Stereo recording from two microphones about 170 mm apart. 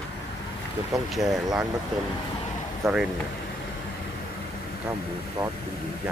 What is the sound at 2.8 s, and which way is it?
Speech, centre (ahead or behind).